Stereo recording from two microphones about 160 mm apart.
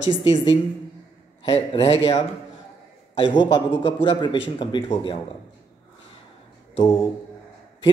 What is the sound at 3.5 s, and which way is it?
A man's voice, 30° left (ahead or behind).